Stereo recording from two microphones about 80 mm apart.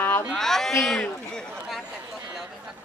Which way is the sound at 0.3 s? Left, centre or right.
Centre.